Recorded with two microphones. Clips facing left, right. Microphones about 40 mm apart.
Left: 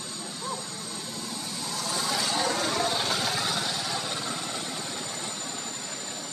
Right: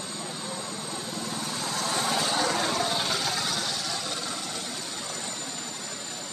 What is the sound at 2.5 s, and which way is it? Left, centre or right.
Vehicle, centre.